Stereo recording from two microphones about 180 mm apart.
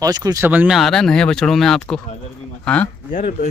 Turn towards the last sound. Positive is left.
turn(degrees=40)  # may be behind; listen again after turning